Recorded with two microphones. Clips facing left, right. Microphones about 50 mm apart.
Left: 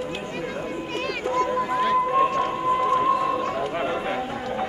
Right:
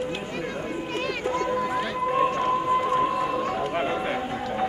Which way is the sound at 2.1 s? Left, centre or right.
Centre.